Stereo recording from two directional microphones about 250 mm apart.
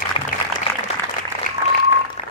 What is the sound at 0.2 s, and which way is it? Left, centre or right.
Applause, left.